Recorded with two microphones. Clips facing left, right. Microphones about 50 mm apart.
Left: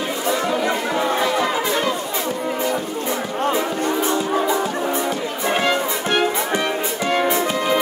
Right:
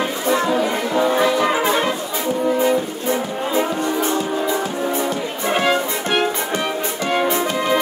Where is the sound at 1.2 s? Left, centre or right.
Right.